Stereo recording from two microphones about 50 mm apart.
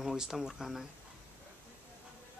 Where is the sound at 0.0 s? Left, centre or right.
Centre.